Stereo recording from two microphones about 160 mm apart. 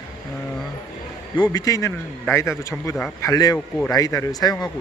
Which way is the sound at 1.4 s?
25° left (ahead or behind).